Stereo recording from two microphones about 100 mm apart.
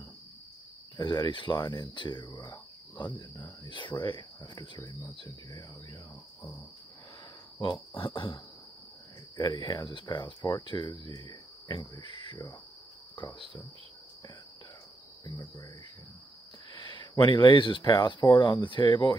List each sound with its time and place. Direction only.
0.9 s speech: 50° left (ahead or behind)
5.5 s speech: 35° left (ahead or behind)
7.9 s speech: 55° left (ahead or behind)
9.4 s speech: 45° left (ahead or behind)
16.7 s speech: 50° left (ahead or behind)